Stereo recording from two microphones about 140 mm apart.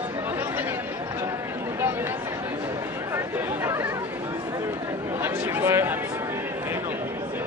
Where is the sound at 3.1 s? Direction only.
15° right (ahead or behind).